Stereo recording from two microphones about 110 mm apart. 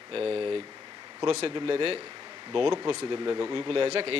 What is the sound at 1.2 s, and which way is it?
A man's voice, 55° right (ahead or behind).